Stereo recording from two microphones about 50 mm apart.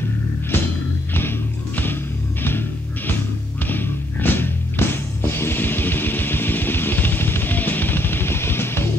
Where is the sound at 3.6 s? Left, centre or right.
Left.